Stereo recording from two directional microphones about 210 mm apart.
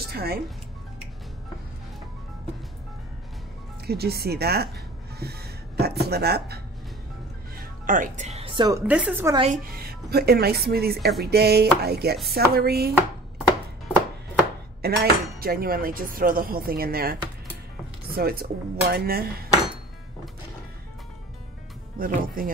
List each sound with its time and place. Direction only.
0.1 s speech: 50° right (ahead or behind)
3.8 s a woman's voice: 50° right (ahead or behind); by 9.4 s 10° right (ahead or behind)
9.8 s speech: 50° right (ahead or behind)
14.8 s speech: 50° right (ahead or behind)
21.9 s speech: 40° right (ahead or behind)